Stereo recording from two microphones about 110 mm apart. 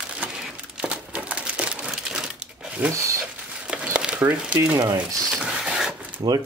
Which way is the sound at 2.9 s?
30° right (ahead or behind).